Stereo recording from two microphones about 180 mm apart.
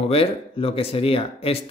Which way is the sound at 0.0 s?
30° left (ahead or behind).